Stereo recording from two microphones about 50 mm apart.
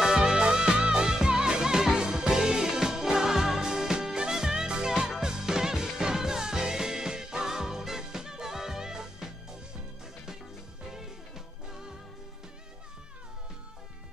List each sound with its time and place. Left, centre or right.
0.0 s music: centre
10.9 s music: centre